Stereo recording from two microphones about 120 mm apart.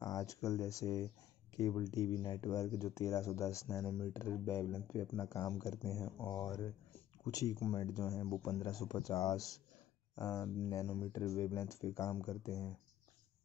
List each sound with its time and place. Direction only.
0.0 s speech: 30° left (ahead or behind)